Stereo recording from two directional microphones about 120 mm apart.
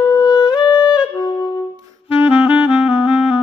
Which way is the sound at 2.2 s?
5° right (ahead or behind).